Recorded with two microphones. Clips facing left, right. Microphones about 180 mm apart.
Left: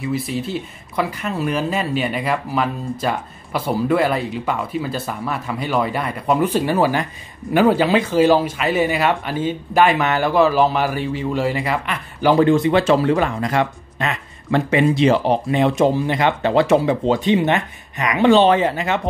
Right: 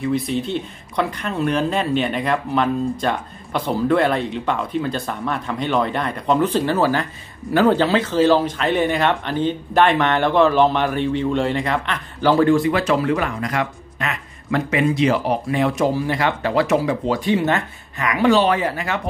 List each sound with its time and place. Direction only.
0.0 s speech: 5° left (ahead or behind); by 18.9 s 25° left (ahead or behind)